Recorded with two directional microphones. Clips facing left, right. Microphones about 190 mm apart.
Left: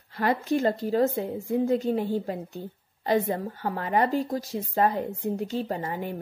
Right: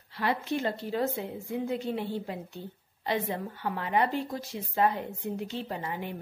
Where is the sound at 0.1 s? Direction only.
45° left (ahead or behind).